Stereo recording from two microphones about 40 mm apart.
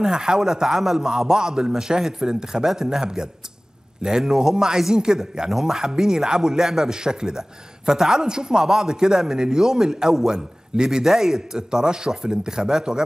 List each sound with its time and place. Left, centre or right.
0.0 s a man's voice: centre